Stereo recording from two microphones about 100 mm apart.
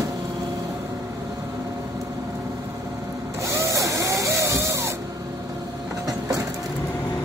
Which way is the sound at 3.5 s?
30° right (ahead or behind).